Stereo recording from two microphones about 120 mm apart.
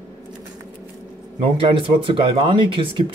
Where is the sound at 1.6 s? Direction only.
45° right (ahead or behind).